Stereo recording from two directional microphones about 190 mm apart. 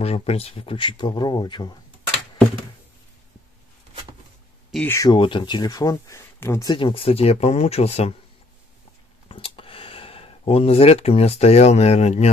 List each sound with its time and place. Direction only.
0.0 s speech: 30° left (ahead or behind)
4.8 s speech: 15° left (ahead or behind); by 8.1 s 35° left (ahead or behind)
9.3 s speech: 30° left (ahead or behind)